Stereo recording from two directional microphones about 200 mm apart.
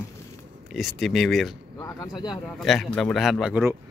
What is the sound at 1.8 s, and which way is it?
Speech, 20° left (ahead or behind).